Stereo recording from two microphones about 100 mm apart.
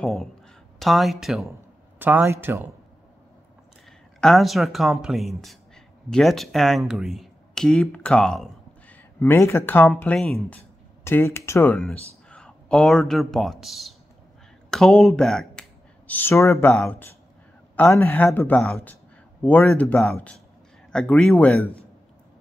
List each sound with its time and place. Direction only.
0.0 s speech: centre (ahead or behind)
2.0 s speech: 20° right (ahead or behind)
4.2 s speech: centre (ahead or behind)
9.2 s speech: 25° left (ahead or behind)
11.7 s a man's voice: 15° left (ahead or behind)
16.1 s speech: 20° left (ahead or behind)
16.3 s speech: 30° left (ahead or behind)
17.8 s speech: 30° left (ahead or behind); by 21.5 s 10° left (ahead or behind)